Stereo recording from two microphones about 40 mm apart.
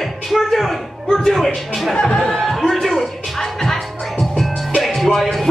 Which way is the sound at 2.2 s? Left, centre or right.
Centre.